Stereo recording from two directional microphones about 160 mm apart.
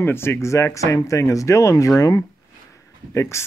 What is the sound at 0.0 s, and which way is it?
Speech, 15° left (ahead or behind).